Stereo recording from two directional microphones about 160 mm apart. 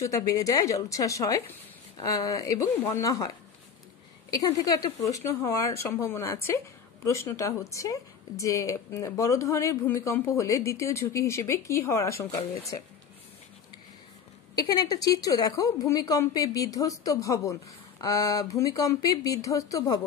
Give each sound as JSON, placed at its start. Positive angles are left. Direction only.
{"t": 0.0, "sound": "a woman's voice", "side_deg": 20}
{"t": 4.3, "sound": "a woman's voice", "side_deg": 25}
{"t": 14.5, "sound": "a woman's voice", "side_deg": 25}